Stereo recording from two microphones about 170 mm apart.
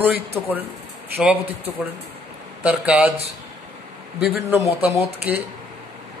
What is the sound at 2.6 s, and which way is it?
Speech, 10° right (ahead or behind).